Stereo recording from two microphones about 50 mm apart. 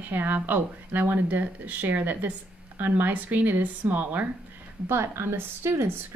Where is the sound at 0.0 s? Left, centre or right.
Right.